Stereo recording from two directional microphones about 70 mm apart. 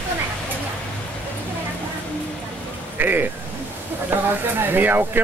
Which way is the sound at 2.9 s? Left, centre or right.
Right.